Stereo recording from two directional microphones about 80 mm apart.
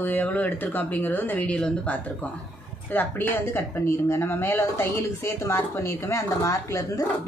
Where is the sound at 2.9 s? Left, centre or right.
Left.